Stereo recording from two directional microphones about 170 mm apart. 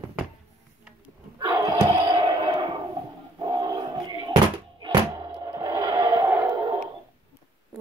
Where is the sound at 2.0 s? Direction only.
30° right (ahead or behind).